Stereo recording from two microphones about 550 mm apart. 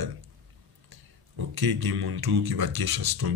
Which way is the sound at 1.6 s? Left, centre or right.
Right.